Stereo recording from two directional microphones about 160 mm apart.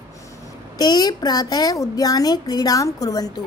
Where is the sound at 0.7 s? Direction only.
25° left (ahead or behind).